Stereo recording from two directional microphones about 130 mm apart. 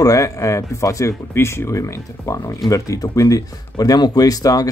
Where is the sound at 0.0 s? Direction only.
25° left (ahead or behind).